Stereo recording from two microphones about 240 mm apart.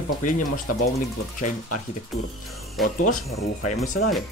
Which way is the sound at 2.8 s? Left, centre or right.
Centre.